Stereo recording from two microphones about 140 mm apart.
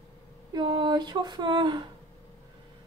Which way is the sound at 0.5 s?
35° right (ahead or behind).